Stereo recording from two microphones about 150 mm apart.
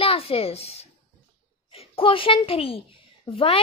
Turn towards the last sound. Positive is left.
turn(degrees=40)  # may be behind; listen again after turning